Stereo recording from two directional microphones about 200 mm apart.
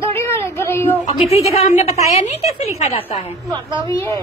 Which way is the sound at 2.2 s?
30° left (ahead or behind).